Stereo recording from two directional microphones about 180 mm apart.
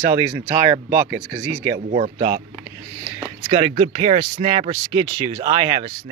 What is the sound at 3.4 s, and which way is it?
Speech, 40° right (ahead or behind).